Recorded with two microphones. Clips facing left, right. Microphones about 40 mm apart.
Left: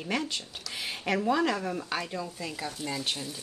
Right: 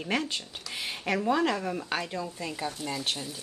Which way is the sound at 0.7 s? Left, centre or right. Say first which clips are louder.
Even; centre.